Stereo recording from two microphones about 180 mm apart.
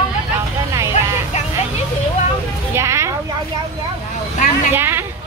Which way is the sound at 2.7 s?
15° right (ahead or behind).